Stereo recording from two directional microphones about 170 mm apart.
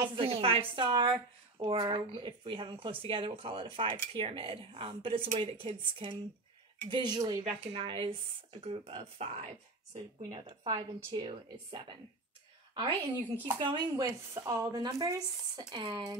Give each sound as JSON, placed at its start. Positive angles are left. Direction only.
{"t": 0.0, "sound": "speech", "side_deg": -30}
{"t": 10.4, "sound": "speech", "side_deg": -20}
{"t": 12.7, "sound": "speech", "side_deg": -30}